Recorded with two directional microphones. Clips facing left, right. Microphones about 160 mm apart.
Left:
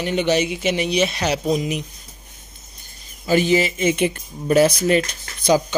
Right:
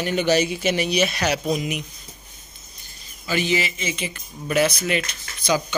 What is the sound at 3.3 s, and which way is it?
Speech, 45° left (ahead or behind).